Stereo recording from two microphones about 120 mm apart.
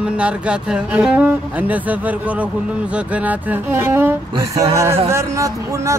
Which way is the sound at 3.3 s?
20° right (ahead or behind).